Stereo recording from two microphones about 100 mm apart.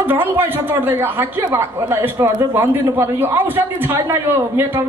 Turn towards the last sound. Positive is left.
turn(degrees=-25)  # may be behind; listen again after turning